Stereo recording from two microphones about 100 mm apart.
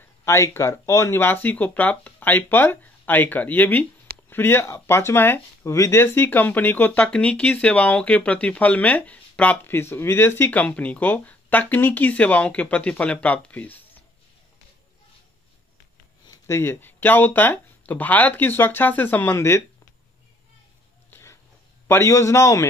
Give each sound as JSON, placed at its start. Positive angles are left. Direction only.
{"t": 0.2, "sound": "speech", "side_deg": 25}
{"t": 16.3, "sound": "speech", "side_deg": 30}
{"t": 21.1, "sound": "a sound", "side_deg": 25}
{"t": 21.8, "sound": "speech", "side_deg": 25}